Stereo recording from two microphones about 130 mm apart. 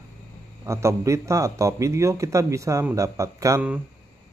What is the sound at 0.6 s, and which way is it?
Speech, 25° right (ahead or behind).